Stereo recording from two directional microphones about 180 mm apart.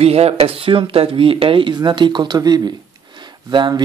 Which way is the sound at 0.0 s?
35° right (ahead or behind).